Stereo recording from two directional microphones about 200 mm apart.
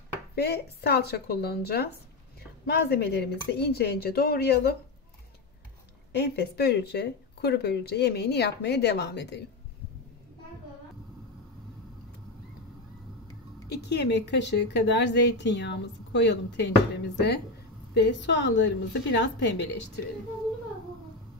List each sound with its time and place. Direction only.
0.4 s speech: 55° left (ahead or behind)
6.1 s a woman's voice: 55° left (ahead or behind)
13.7 s a woman's voice: 55° left (ahead or behind)